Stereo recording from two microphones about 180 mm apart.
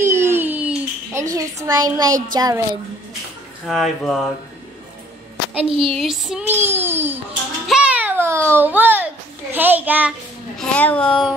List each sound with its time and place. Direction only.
0.0 s a sound: 15° right (ahead or behind)
1.2 s a woman's voice: 20° right (ahead or behind)
3.6 s a child's voice: centre (ahead or behind)
5.7 s a sound: 30° right (ahead or behind)
5.9 s child singing: centre (ahead or behind)
7.6 s babbling: 5° right (ahead or behind)
8.5 s a child's voice: 10° right (ahead or behind)
10.6 s a child's voice: 5° left (ahead or behind)